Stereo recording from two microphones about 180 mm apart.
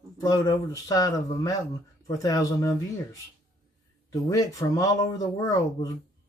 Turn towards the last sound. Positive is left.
turn(degrees=20)  # may be behind; listen again after turning